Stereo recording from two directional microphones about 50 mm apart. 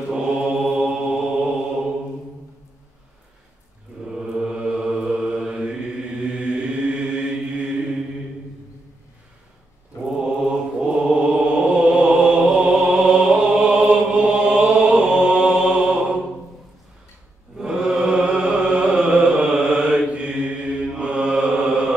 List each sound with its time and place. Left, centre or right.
0.1 s mantra: centre
4.1 s mantra: centre
10.4 s mantra: centre
12.4 s chant: centre
17.6 s mantra: centre
19.5 s mantra: centre